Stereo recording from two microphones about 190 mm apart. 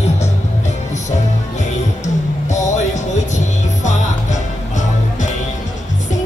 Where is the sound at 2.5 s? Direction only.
40° left (ahead or behind).